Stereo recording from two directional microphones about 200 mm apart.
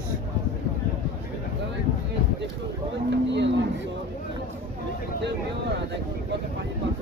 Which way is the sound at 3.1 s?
60° right (ahead or behind).